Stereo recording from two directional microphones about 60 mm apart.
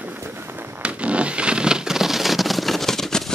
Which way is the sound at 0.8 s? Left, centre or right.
Right.